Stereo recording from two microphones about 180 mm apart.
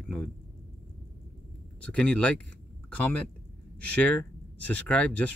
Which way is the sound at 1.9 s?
5° left (ahead or behind).